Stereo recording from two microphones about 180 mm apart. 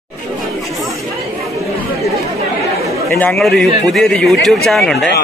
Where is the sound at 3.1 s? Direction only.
5° left (ahead or behind).